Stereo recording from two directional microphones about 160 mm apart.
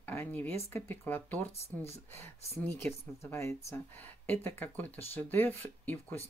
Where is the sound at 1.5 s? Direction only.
40° left (ahead or behind).